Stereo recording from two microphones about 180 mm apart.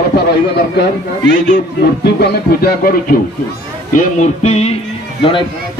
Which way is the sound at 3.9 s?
40° left (ahead or behind).